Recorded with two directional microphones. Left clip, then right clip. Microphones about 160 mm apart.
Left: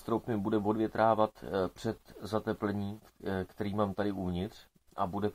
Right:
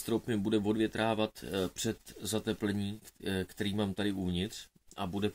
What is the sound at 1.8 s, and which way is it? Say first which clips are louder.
Speech: right 1 dB; 15° right (ahead or behind).